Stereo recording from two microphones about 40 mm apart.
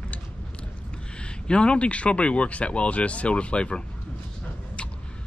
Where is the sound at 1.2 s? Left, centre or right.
Left.